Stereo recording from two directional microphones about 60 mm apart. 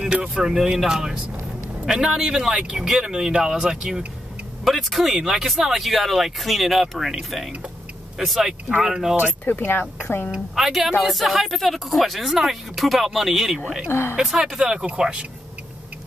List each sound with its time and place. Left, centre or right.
0.0 s speech: centre
9.5 s speech: left
10.3 s speech: centre
13.8 s speech: left
14.1 s speech: centre